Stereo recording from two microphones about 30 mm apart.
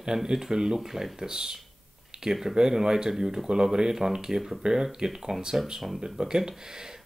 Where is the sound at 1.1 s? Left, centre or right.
Right.